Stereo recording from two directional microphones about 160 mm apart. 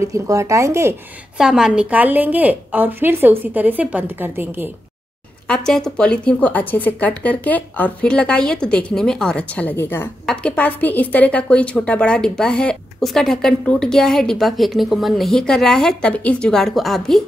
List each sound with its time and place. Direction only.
0.0 s a woman's voice: 20° right (ahead or behind)
1.4 s a woman's voice: 5° right (ahead or behind)
5.5 s a woman's voice: 5° left (ahead or behind)